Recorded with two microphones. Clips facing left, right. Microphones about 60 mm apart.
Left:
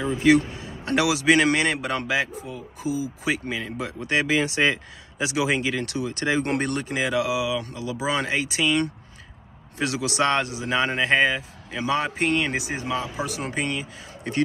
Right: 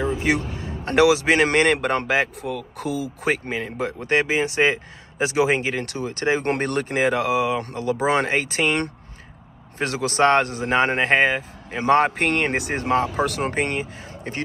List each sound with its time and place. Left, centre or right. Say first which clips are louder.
0.2 s speech: left 4 dB; right
2.4 s speech: right 3 dB; right
3.3 s a man's voice: right 4 dB; right